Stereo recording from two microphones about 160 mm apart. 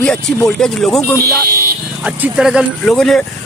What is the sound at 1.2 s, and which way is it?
Speech, 65° right (ahead or behind).